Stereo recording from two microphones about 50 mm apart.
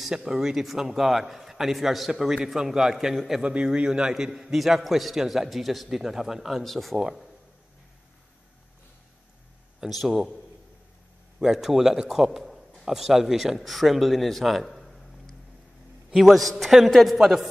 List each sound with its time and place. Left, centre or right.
0.0 s a man's voice: centre
4.1 s a man's voice: centre
9.8 s a man's voice: centre
11.3 s a man's voice: centre